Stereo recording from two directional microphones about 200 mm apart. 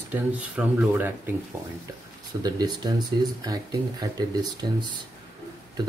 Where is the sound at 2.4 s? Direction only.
20° right (ahead or behind).